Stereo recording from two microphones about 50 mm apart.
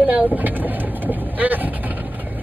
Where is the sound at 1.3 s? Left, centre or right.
Right.